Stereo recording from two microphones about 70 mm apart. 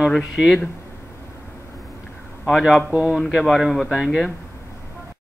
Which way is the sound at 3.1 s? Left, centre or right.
Centre.